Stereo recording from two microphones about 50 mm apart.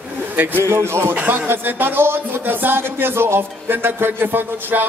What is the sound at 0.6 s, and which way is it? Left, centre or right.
Music, right.